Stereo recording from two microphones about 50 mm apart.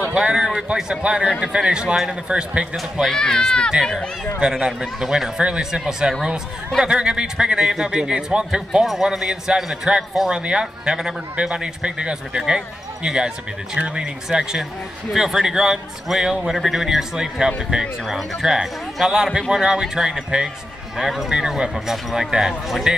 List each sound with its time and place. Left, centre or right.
0.1 s a man's voice: centre
3.1 s speech: centre
4.4 s a man's voice: centre
8.8 s a man's voice: centre; by 17.9 s right
18.0 s a man's voice: centre